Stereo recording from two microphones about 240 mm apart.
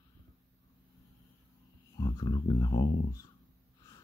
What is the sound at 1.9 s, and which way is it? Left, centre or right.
Speech, centre.